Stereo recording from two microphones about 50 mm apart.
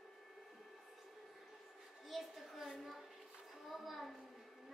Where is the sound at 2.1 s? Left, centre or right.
Centre.